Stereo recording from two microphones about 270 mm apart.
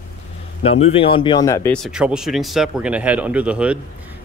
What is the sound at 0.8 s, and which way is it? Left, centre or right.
Speech, left.